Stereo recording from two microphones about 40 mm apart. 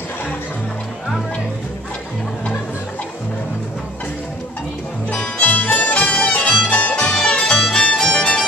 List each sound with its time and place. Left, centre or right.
5.1 s music: left
7.1 s music: centre